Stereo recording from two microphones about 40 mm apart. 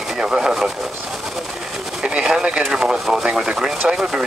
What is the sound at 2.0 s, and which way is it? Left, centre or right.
Speech, centre.